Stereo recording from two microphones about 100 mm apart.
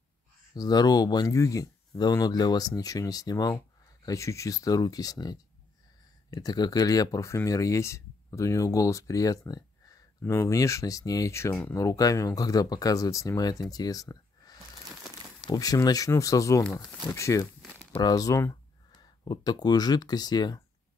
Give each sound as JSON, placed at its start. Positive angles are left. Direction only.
{"t": 0.6, "sound": "speech", "side_deg": 45}
{"t": 10.2, "sound": "speech", "side_deg": 25}